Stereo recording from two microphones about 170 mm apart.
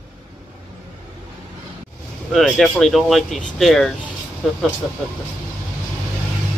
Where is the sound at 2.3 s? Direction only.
Centre (ahead or behind).